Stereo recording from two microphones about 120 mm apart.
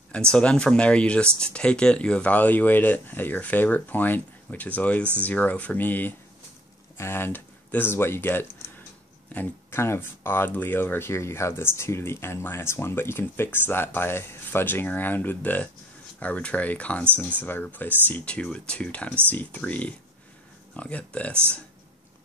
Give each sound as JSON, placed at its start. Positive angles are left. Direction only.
{"t": 0.1, "sound": "speech", "side_deg": 10}